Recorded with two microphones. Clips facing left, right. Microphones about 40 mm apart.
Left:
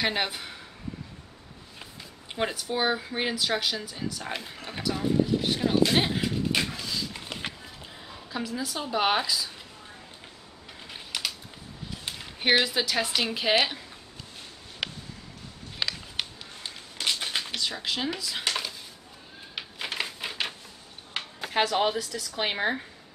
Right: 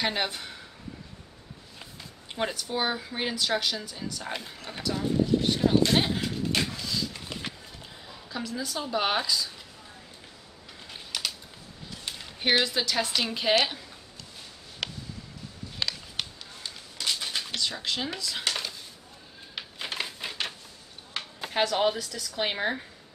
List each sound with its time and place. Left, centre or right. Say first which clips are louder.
0.0 s speech: left 1 dB; centre
2.3 s speech: left 1 dB; centre
7.2 s a sound: left 1 dB; centre
8.1 s a woman's voice: left 2 dB; centre
10.9 s typing: left 1 dB; centre
11.9 s speech: left 1 dB; centre
14.8 s a sound: left 1 dB; centre
21.4 s a woman's voice: left 1 dB; centre